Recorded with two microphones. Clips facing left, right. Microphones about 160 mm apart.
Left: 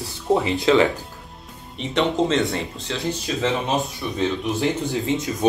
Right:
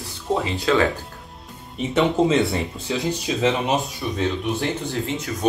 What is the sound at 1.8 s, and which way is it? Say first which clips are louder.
Speech: right 2 dB; 5° right (ahead or behind).